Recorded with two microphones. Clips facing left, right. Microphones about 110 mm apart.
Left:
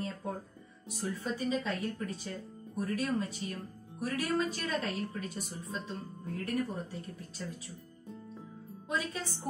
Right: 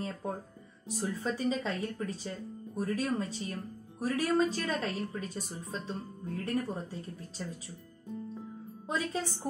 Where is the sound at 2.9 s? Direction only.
30° right (ahead or behind).